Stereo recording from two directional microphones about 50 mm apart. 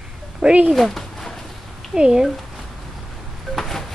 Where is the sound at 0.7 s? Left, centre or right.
Centre.